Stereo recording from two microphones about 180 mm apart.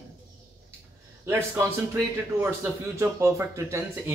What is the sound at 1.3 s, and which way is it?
Speech, 15° right (ahead or behind).